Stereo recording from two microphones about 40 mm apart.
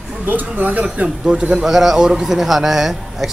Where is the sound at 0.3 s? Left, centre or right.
Right.